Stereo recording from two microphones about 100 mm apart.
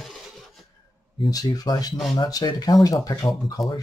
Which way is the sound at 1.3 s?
40° left (ahead or behind).